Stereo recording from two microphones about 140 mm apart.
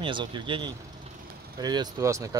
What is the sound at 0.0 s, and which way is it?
Speech, 35° right (ahead or behind).